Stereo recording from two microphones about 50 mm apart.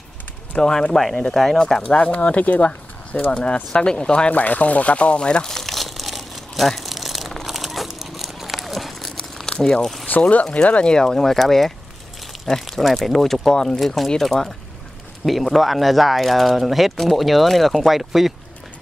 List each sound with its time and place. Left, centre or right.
0.6 s speech: centre
4.3 s crumpling: left; by 9.1 s centre
9.1 s a sound: centre
10.3 s speech: left; by 18.3 s centre